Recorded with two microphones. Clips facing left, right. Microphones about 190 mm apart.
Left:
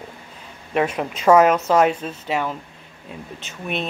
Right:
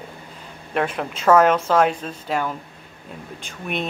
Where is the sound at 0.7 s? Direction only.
5° left (ahead or behind).